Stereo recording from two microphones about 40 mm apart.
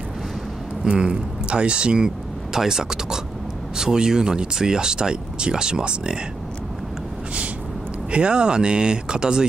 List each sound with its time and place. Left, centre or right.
0.8 s speech: right
8.1 s speech: right